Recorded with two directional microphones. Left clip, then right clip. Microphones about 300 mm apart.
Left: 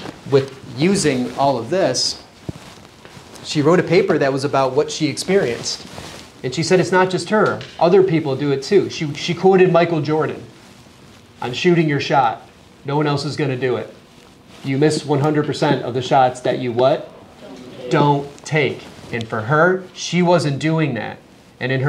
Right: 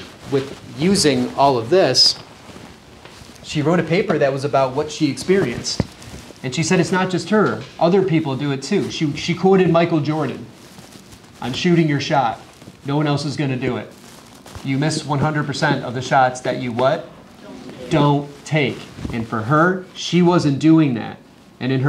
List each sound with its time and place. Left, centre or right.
0.3 s speech: centre
0.9 s speech: centre
3.4 s speech: centre
11.5 s speech: centre
17.8 s speech: centre